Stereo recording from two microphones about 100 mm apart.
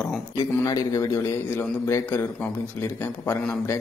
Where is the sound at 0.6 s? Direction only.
35° left (ahead or behind).